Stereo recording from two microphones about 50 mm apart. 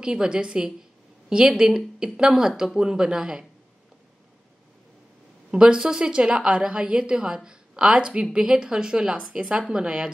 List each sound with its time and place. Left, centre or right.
0.0 s a woman's voice: centre
5.5 s a woman's voice: centre